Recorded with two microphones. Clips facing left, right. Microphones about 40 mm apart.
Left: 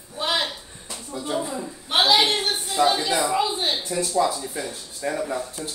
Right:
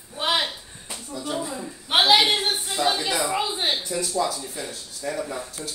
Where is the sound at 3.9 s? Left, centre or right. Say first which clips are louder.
Left 3 dB; left.